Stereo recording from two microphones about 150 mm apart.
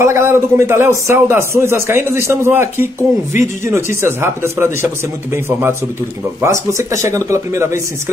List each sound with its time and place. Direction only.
0.0 s a man's voice: 15° right (ahead or behind)